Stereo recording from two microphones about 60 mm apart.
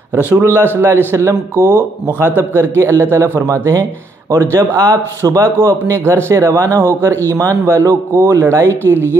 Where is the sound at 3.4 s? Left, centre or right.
Right.